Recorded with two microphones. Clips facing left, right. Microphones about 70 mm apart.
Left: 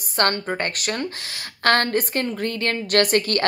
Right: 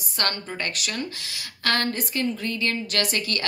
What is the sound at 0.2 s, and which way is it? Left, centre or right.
A woman's voice, left.